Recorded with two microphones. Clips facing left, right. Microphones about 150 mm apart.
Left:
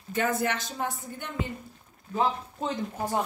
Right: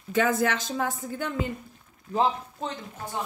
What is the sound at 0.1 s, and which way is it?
Speech, 90° right.